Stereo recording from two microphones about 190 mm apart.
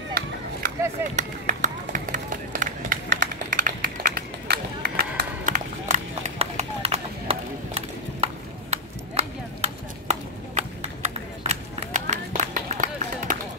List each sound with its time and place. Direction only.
0.1 s chop: 45° right (ahead or behind)
1.1 s run: 40° right (ahead or behind)